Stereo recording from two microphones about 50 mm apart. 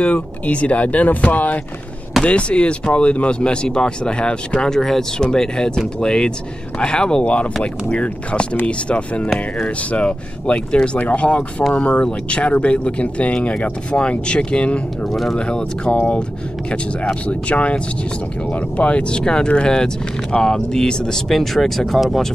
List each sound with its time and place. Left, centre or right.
0.0 s speech: left; by 22.3 s centre